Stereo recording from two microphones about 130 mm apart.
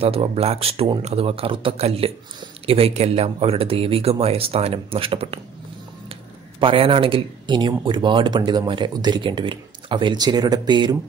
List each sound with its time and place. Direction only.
0.0 s speech: 45° right (ahead or behind)
6.6 s speech: 45° right (ahead or behind)